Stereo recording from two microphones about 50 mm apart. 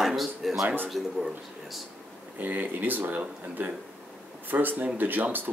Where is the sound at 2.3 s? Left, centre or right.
Right.